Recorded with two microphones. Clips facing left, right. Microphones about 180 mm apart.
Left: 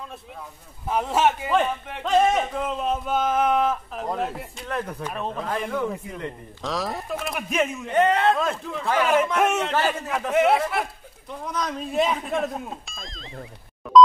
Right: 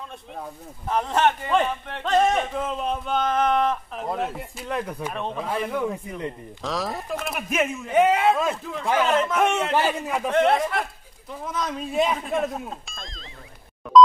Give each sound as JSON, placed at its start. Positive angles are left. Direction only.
{"t": 0.8, "sound": "a man's voice", "side_deg": 5}
{"t": 9.8, "sound": "a man's voice", "side_deg": -10}
{"t": 10.3, "sound": "a man's voice", "side_deg": 5}
{"t": 13.9, "sound": "music", "side_deg": 0}